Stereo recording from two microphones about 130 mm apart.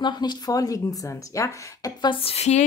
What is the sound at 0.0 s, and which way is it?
Speech, 35° left (ahead or behind).